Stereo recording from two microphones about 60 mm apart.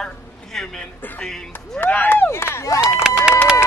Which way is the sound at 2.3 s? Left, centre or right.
Left.